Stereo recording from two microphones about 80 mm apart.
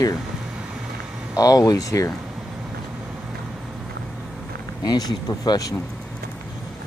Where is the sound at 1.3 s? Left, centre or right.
Left.